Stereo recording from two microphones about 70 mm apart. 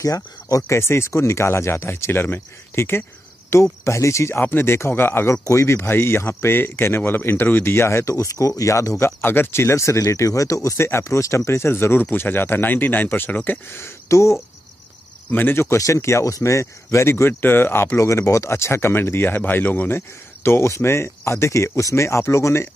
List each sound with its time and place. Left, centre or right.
0.0 s speech: left
4.4 s speech: left
9.0 s speech: left
15.2 s speech: left
20.4 s speech: left